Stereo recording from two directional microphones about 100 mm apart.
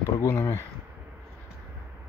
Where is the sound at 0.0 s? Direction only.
30° left (ahead or behind).